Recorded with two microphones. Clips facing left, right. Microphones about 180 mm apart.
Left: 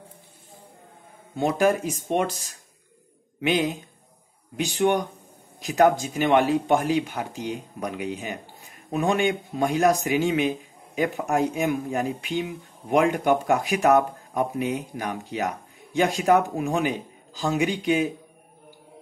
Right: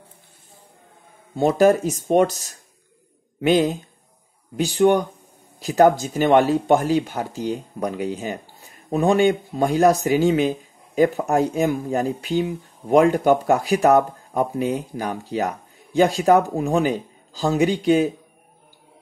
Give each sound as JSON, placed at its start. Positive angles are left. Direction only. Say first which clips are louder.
{"t": 1.3, "sound": "speech", "louder": "right 6 dB", "side_deg": -35}
{"t": 3.3, "sound": "speech", "louder": "right 6 dB", "side_deg": -35}